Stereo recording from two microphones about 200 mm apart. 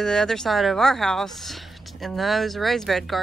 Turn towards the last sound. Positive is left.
turn(degrees=0)  # may be behind; listen again after turning